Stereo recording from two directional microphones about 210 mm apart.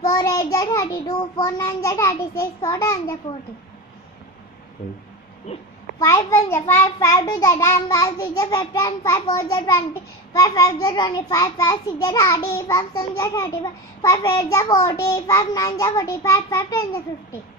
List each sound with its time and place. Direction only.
0.0 s a child's voice: 15° left (ahead or behind)
5.9 s a child's voice: 15° left (ahead or behind)